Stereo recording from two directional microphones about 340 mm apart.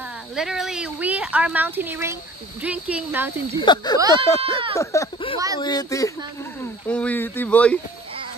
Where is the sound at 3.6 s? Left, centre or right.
Centre.